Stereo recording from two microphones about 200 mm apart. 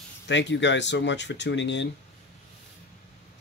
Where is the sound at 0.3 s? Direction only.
60° left (ahead or behind).